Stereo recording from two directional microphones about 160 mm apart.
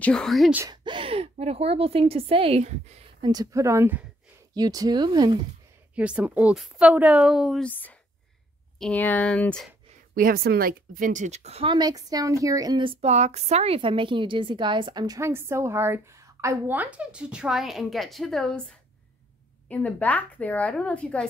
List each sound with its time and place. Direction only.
0.0 s speech: 5° left (ahead or behind)
0.7 s a woman's voice: 30° right (ahead or behind)
3.2 s speech: 25° right (ahead or behind)
5.9 s a woman's voice: 10° right (ahead or behind)
7.6 s a woman's voice: 10° left (ahead or behind)
10.1 s a woman's voice: 65° right (ahead or behind); by 21.3 s 5° left (ahead or behind)